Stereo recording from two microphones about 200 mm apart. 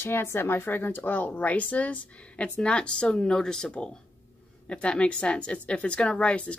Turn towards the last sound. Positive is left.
turn(degrees=5)  # may be behind; listen again after turning